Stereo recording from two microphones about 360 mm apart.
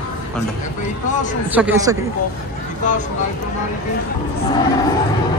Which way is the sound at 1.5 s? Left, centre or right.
Centre.